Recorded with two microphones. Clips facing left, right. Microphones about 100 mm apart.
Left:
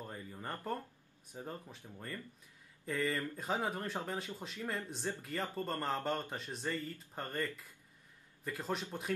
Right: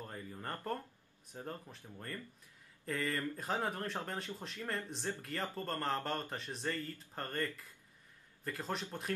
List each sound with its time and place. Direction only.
0.0 s a sound: 5° left (ahead or behind)
1.3 s speech: 5° left (ahead or behind)
8.5 s speech: centre (ahead or behind)